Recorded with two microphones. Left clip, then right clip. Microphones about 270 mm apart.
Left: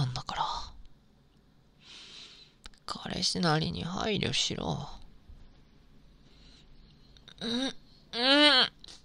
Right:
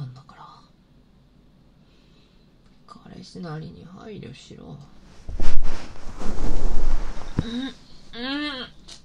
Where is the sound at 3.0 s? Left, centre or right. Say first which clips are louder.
Left 11 dB; left.